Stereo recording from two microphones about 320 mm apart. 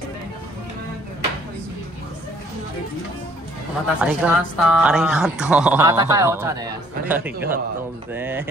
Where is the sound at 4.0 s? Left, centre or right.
Centre.